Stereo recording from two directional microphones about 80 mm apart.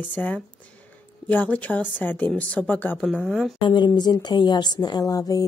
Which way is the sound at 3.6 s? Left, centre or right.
Left.